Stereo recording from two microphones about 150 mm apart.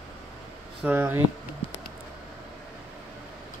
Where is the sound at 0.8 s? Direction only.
10° right (ahead or behind).